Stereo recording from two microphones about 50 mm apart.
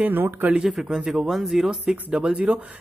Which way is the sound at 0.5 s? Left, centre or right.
Centre.